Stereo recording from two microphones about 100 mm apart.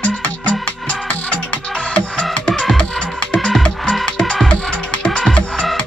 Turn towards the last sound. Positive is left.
turn(degrees=10)  # may be behind; listen again after turning